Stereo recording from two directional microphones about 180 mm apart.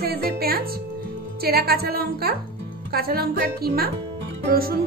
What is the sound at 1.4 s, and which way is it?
A woman's voice, 60° right (ahead or behind).